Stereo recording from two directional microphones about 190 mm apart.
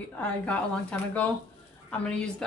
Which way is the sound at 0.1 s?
5° left (ahead or behind).